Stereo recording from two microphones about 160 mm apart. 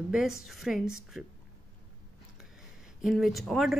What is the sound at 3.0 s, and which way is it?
Speech, centre (ahead or behind).